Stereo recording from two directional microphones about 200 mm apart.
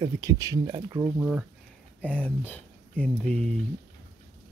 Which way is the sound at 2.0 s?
5° left (ahead or behind).